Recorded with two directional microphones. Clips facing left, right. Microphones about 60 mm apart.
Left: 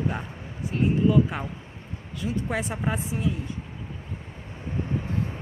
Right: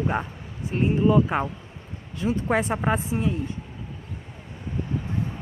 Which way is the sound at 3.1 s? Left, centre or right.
Right.